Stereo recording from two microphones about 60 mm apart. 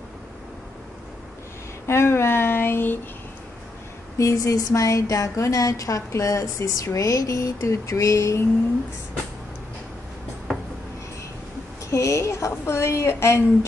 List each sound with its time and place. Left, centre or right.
1.9 s speech: left
4.2 s a woman's voice: left
11.9 s a woman's voice: left